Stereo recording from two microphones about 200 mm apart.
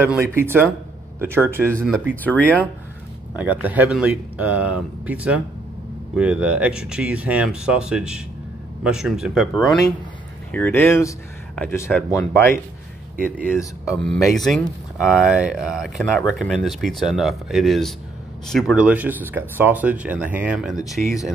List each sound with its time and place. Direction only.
0.0 s speech: 10° right (ahead or behind)
2.2 s speech: 10° left (ahead or behind)
3.3 s speech: 10° right (ahead or behind)
10.5 s speech: 10° left (ahead or behind)
13.1 s speech: 45° right (ahead or behind)
14.0 s speech: centre (ahead or behind)